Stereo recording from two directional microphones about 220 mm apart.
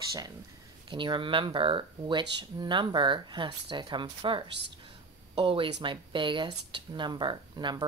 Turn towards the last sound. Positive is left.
turn(degrees=-20)  # may be behind; listen again after turning